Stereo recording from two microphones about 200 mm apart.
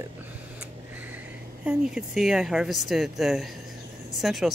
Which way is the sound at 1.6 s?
5° right (ahead or behind).